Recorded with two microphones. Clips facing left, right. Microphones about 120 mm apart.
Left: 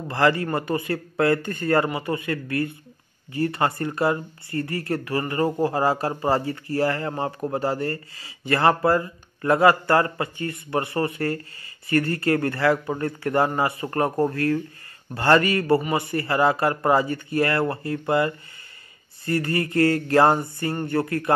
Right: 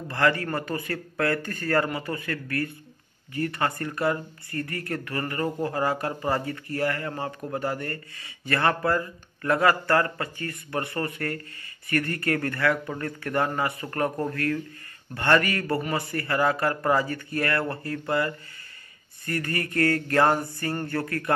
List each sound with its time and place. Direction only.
0.1 s a man's voice: 25° left (ahead or behind)